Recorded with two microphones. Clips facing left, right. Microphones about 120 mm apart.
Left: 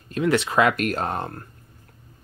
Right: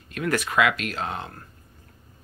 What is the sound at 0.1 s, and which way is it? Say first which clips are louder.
Speech: left 5 dB; 25° left (ahead or behind).